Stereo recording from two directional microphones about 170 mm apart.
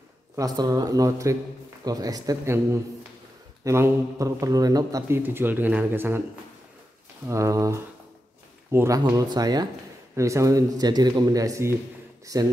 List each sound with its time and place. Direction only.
0.4 s speech: 20° right (ahead or behind)
7.2 s speech: 20° right (ahead or behind)